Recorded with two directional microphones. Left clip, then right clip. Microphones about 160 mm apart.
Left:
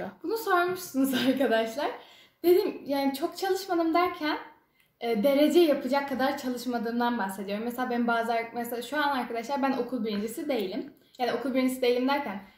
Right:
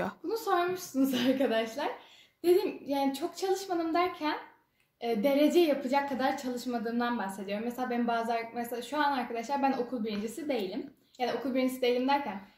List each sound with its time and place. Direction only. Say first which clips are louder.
0.3 s a woman's voice: left 4 dB; 5° left (ahead or behind)